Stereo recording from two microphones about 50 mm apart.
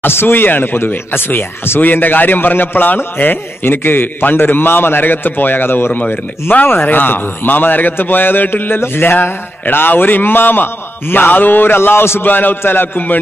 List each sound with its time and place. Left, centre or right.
0.0 s a man's voice: left
12.3 s a man's voice: left